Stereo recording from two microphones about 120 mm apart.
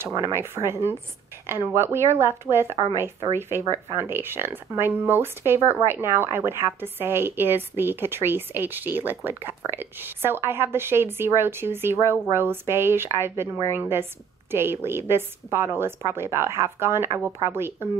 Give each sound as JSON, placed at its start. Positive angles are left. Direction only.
{"t": 0.2, "sound": "a woman's voice", "side_deg": -20}